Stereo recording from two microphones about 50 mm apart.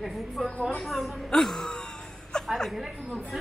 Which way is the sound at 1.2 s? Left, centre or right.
Centre.